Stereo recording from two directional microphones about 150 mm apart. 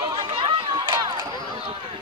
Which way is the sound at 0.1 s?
35° right (ahead or behind).